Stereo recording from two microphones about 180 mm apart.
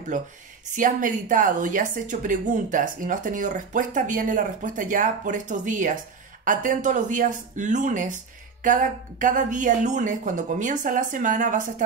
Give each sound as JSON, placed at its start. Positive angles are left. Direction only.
{"t": 0.7, "sound": "a woman's voice", "side_deg": -45}